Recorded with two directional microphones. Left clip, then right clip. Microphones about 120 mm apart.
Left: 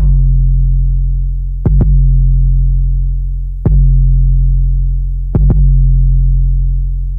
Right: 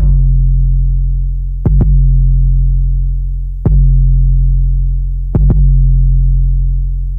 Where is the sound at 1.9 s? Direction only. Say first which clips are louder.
Even; 25° right (ahead or behind).